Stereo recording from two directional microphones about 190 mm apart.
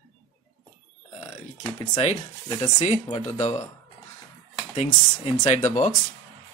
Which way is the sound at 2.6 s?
35° left (ahead or behind).